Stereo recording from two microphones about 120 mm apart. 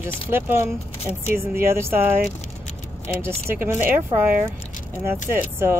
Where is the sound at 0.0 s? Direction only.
20° right (ahead or behind).